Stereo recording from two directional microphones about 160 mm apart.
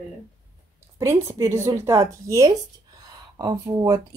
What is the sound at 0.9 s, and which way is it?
Speech, 15° right (ahead or behind).